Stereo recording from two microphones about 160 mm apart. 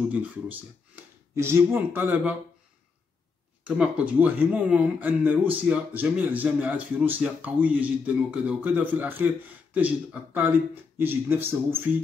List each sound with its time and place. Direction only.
0.1 s speech: 10° right (ahead or behind)
3.6 s speech: 5° right (ahead or behind)